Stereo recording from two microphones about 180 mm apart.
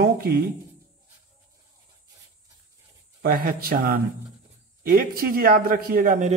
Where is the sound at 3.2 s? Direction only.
55° right (ahead or behind).